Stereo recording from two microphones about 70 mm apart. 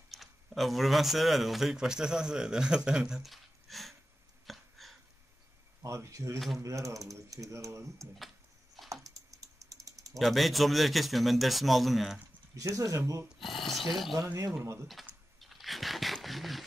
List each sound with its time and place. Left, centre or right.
0.1 s speech: centre
4.5 s a sound: centre
5.8 s speech: right
9.0 s typing: right
10.1 s speech: centre
12.5 s speech: right
13.4 s speech: centre
14.9 s typing: centre